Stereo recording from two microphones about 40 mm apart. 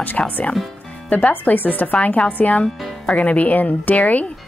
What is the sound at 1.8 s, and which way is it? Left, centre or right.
Speech, left.